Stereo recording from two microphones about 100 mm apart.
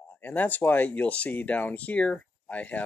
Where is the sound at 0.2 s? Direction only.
15° left (ahead or behind).